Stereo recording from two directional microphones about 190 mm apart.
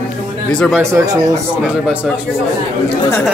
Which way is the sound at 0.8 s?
20° right (ahead or behind).